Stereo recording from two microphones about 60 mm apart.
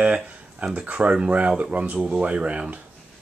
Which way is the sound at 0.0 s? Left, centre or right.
Right.